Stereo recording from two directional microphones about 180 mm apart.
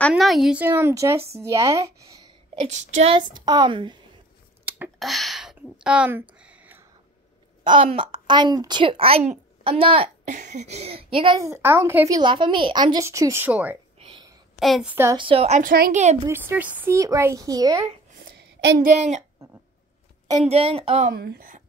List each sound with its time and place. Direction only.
0.1 s a woman's voice: centre (ahead or behind); by 2.1 s 15° right (ahead or behind)
2.6 s a child's voice: 40° right (ahead or behind)
4.6 s a sound: 10° right (ahead or behind)
4.9 s a sound: centre (ahead or behind)
7.6 s a woman's voice: 30° right (ahead or behind)
11.3 s a woman's voice: 15° right (ahead or behind)
13.9 s a sound: 30° right (ahead or behind)
14.6 s a woman's voice: centre (ahead or behind)
15.1 s a woman's voice: 30° right (ahead or behind)
16.3 s a woman's voice: 10° right (ahead or behind)
18.2 s a sound: 70° right (ahead or behind)
18.8 s a woman's voice: 45° right (ahead or behind)
20.4 s a woman's voice: 35° right (ahead or behind)
21.1 s speech: 60° right (ahead or behind)